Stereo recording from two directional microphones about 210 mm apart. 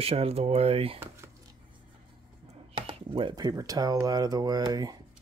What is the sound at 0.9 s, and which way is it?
Speech, 10° right (ahead or behind).